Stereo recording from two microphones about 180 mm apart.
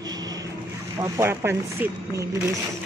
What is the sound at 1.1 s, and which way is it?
Speech, 15° right (ahead or behind).